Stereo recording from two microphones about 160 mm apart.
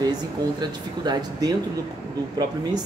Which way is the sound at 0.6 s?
25° right (ahead or behind).